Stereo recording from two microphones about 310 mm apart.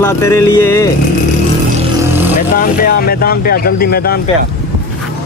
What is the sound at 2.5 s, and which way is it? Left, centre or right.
Speech, left.